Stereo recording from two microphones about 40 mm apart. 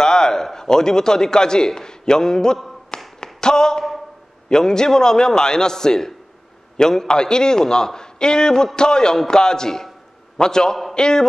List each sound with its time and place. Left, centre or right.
0.0 s a man's voice: centre
3.2 s a sound: centre
4.5 s a man's voice: centre